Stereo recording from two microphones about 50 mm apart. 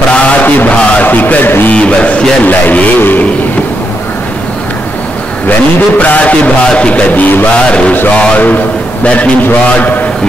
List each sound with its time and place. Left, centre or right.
0.1 s a sound: left
0.7 s music: left
1.0 s a man's voice: left
1.7 s music: left
2.4 s a man's voice: left
5.9 s music: left
6.7 s music: centre
7.1 s a man's voice: left
7.5 s music: left
9.8 s a man's voice: left